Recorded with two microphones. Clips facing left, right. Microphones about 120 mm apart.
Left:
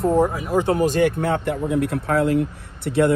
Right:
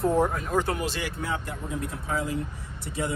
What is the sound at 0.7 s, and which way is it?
Speech, 50° left (ahead or behind).